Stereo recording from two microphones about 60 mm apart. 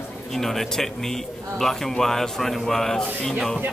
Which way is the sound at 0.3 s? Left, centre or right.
Centre.